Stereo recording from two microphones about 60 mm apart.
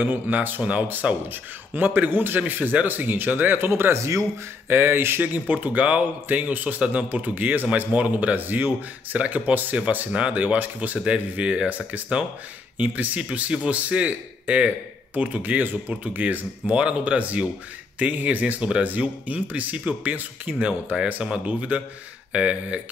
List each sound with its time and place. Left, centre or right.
0.0 s a man's voice: right
0.6 s a man's voice: right
4.6 s speech: right; by 22.8 s centre